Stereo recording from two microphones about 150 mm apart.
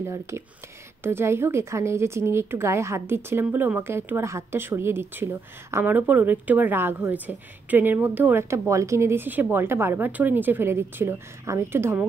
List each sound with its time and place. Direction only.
0.0 s speech: 20° right (ahead or behind)